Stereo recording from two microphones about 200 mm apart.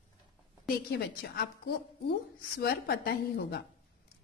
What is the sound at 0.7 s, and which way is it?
A woman's voice, 50° left (ahead or behind).